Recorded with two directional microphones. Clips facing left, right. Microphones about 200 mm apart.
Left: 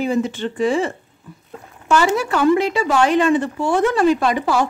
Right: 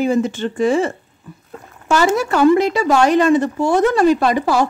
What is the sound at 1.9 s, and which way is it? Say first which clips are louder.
A woman's voice: right 2 dB; 40° right (ahead or behind).